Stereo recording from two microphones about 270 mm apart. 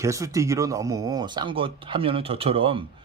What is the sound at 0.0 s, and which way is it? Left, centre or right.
A man's voice, centre.